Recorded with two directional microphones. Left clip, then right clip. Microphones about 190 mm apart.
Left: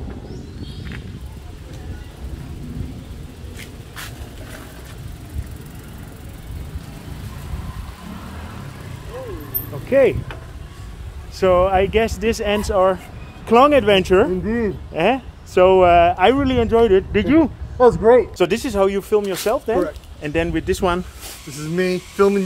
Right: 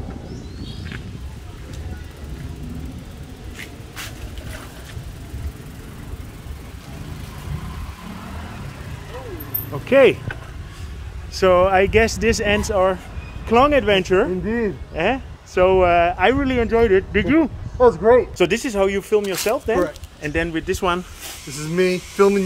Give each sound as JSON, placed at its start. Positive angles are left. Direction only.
{"t": 9.8, "sound": "speech", "side_deg": -35}
{"t": 11.3, "sound": "speech", "side_deg": -20}
{"t": 12.4, "sound": "speech", "side_deg": 5}
{"t": 13.5, "sound": "speech", "side_deg": 40}
{"t": 14.4, "sound": "speech", "side_deg": 10}
{"t": 15.0, "sound": "speech", "side_deg": 45}
{"t": 17.7, "sound": "speech", "side_deg": 60}
{"t": 18.4, "sound": "speech", "side_deg": 10}
{"t": 21.7, "sound": "speech", "side_deg": -10}